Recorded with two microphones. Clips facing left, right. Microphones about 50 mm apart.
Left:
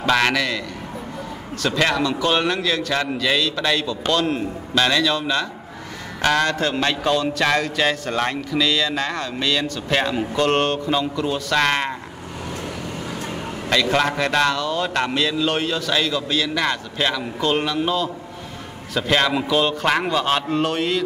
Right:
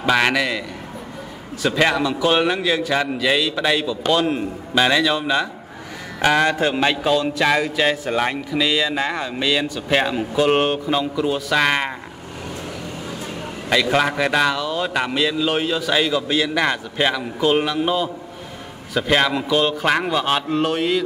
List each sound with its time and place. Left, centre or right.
0.0 s a man's voice: centre
1.6 s speech: centre
13.7 s a man's voice: centre